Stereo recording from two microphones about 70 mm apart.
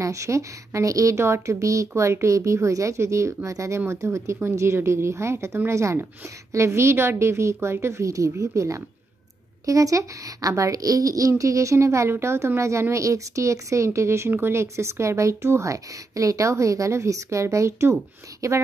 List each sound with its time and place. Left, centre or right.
0.0 s speech: right
1.2 s speech: right